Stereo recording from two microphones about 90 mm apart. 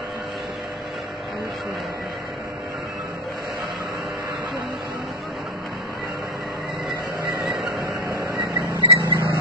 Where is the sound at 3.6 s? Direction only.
Centre (ahead or behind).